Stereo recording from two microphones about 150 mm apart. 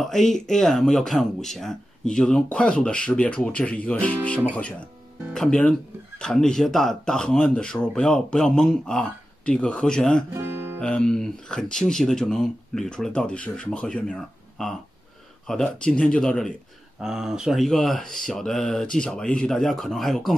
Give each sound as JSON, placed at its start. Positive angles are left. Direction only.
{"t": 0.0, "sound": "speech", "side_deg": 0}
{"t": 10.3, "sound": "music", "side_deg": -15}
{"t": 10.8, "sound": "speech", "side_deg": 5}